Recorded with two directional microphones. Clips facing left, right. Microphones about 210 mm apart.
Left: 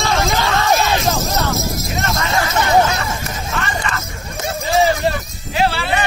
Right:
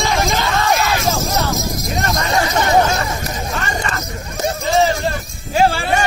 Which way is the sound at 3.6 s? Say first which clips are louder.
Right 1 dB; 40° right (ahead or behind).